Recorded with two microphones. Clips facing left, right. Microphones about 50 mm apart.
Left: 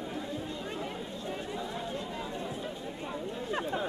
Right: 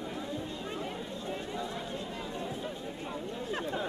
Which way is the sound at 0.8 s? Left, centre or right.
Centre.